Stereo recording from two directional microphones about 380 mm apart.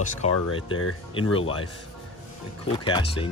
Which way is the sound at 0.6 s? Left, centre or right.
Left.